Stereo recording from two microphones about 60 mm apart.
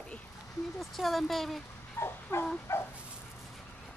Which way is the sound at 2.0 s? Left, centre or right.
Left.